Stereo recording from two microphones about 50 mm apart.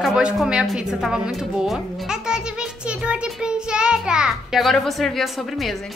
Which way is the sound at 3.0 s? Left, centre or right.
Centre.